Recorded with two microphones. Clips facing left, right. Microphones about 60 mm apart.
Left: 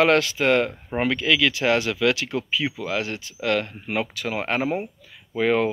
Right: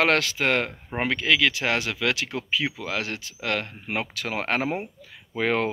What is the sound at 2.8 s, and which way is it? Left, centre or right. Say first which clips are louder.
Speech: left 3 dB; right.